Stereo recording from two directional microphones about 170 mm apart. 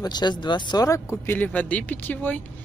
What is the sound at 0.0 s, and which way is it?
Speech, 25° left (ahead or behind).